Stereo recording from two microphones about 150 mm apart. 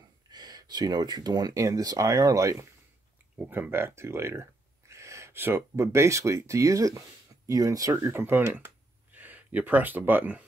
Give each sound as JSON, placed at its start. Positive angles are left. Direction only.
{"t": 0.3, "sound": "speech", "side_deg": -25}
{"t": 3.3, "sound": "speech", "side_deg": -10}